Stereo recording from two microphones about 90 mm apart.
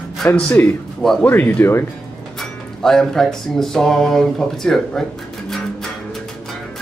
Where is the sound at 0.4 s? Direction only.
15° left (ahead or behind).